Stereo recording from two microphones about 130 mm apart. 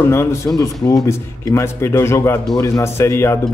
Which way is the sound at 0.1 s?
20° left (ahead or behind).